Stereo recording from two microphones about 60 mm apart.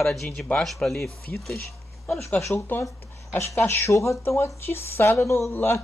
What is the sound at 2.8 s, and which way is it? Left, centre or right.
Speech, left.